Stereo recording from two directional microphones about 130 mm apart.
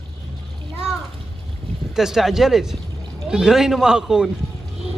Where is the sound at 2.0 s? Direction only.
5° right (ahead or behind).